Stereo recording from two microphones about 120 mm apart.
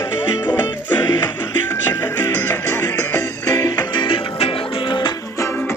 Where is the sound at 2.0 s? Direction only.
20° left (ahead or behind).